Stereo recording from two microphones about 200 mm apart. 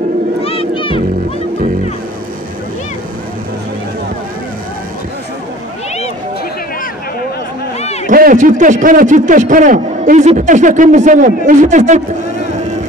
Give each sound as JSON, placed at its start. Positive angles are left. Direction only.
{"t": 0.4, "sound": "music", "side_deg": 30}
{"t": 8.1, "sound": "a man's voice", "side_deg": -45}